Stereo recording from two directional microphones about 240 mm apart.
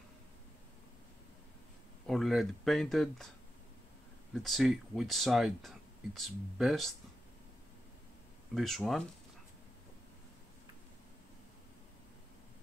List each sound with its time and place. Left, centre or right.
2.0 s speech: centre
4.3 s speech: centre
8.5 s speech: centre